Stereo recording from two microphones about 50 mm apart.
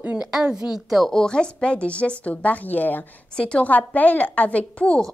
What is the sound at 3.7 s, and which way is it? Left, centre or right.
A woman's voice, left.